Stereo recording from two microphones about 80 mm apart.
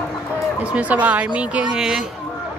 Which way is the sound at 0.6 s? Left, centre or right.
Centre.